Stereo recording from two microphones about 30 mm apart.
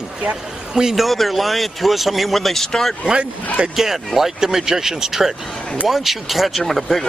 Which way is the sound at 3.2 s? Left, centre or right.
Right.